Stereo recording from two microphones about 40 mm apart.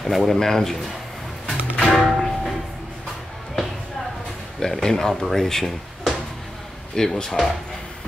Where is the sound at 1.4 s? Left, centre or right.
Centre.